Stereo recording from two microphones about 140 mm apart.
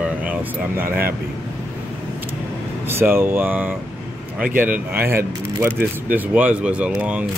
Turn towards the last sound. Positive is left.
turn(degrees=-10)  # may be behind; listen again after turning